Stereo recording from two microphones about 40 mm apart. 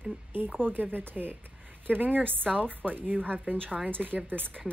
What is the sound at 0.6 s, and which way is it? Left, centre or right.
Speech, right.